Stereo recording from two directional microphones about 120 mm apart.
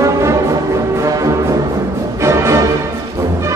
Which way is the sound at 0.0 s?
25° right (ahead or behind).